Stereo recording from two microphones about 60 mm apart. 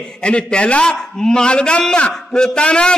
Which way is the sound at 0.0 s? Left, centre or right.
Centre.